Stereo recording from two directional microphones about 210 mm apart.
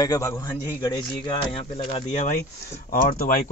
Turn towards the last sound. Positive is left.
turn(degrees=45)  # may be behind; listen again after turning